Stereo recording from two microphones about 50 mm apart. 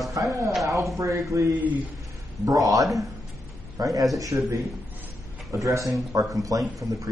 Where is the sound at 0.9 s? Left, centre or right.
Right.